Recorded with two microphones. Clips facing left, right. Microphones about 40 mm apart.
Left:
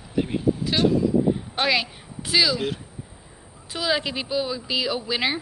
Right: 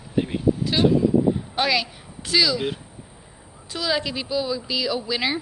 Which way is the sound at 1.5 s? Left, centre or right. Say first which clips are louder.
Even; centre.